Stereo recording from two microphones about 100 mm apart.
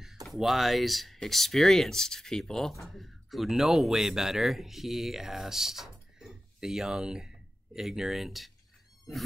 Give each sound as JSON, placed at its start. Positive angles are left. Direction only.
{"t": 0.3, "sound": "speech", "side_deg": 0}